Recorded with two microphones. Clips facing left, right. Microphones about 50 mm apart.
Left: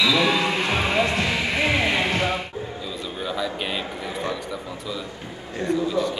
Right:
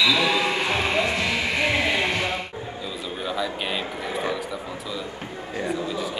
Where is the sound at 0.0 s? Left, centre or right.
Centre.